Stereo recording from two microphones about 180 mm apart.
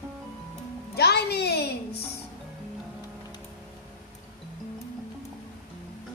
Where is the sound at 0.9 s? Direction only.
65° left (ahead or behind).